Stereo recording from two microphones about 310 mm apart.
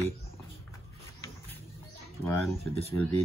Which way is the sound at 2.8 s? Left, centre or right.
Centre.